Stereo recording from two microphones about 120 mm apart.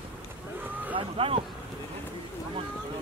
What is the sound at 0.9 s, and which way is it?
Speech, 50° right (ahead or behind).